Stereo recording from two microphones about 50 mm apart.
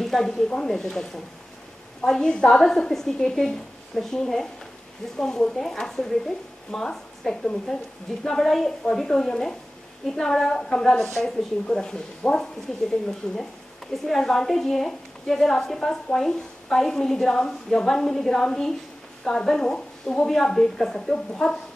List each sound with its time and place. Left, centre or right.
0.0 s a woman's voice: centre
14.0 s a woman's voice: centre